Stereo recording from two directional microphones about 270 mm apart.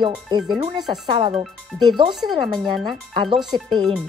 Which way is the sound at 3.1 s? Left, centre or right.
Centre.